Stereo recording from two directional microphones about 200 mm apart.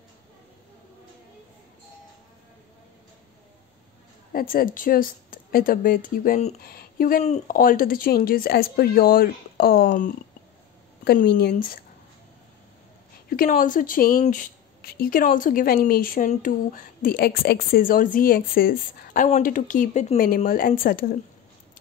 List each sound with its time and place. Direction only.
4.3 s speech: 45° left (ahead or behind)
13.3 s speech: 45° left (ahead or behind)
20.2 s speech: 45° left (ahead or behind)